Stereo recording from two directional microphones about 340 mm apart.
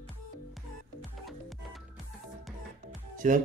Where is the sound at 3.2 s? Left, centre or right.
Right.